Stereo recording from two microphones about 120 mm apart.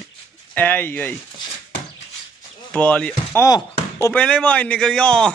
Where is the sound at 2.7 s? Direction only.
10° left (ahead or behind).